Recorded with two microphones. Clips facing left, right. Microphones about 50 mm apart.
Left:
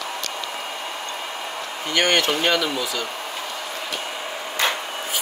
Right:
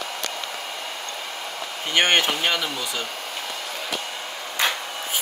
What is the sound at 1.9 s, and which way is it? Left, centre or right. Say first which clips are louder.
Speech: even; right.